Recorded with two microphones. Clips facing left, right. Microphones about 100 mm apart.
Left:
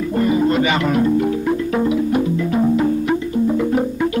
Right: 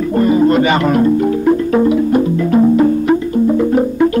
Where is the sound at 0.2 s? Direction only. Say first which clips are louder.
Right 5 dB; 45° right (ahead or behind).